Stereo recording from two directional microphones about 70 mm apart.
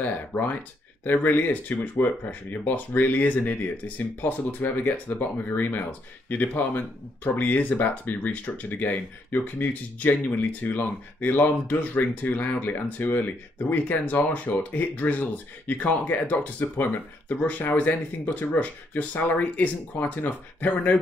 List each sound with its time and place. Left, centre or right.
0.0 s speech: left